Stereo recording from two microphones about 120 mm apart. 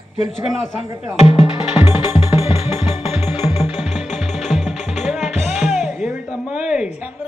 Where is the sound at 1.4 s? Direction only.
55° left (ahead or behind).